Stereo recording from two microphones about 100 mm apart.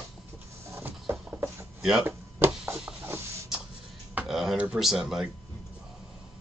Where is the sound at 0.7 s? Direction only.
15° right (ahead or behind).